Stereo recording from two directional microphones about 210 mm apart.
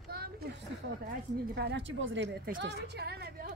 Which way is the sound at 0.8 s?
70° right (ahead or behind).